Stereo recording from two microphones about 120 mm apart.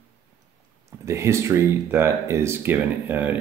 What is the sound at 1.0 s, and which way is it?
Speech, 25° right (ahead or behind).